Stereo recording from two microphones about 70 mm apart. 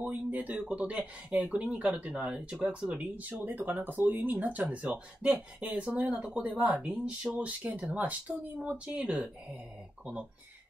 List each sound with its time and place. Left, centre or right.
0.0 s speech: right